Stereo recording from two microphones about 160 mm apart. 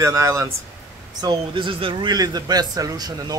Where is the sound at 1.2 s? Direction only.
30° right (ahead or behind).